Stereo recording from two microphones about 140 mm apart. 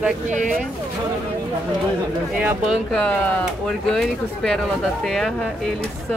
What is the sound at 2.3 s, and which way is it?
Speech, 10° right (ahead or behind).